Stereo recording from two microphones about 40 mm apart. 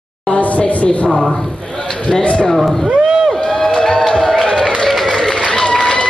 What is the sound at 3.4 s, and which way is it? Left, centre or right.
Crowd, centre.